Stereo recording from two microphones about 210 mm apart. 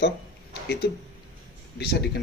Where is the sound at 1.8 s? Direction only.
50° left (ahead or behind).